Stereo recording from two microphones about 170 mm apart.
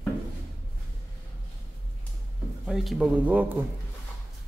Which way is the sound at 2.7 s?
Centre (ahead or behind).